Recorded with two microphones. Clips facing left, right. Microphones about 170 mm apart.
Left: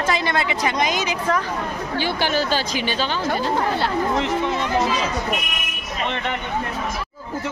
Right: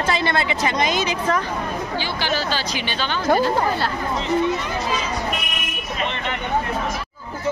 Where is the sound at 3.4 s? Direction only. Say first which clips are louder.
Right 1 dB; 20° left (ahead or behind).